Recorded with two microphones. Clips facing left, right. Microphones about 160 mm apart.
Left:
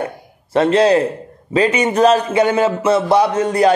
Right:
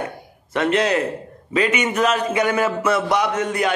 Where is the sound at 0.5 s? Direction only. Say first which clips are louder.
Left 7 dB; 30° left (ahead or behind).